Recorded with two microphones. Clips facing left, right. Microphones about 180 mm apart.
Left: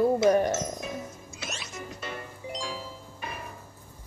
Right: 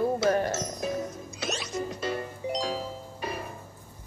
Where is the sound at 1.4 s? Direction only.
40° right (ahead or behind).